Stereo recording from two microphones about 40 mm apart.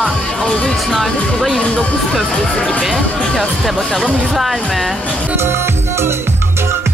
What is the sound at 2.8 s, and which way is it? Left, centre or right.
A woman's voice, centre.